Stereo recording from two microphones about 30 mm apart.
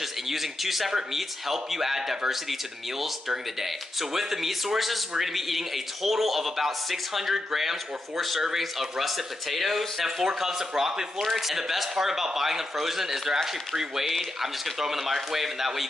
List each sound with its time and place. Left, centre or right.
0.3 s a man's voice: centre
10.2 s a man's voice: centre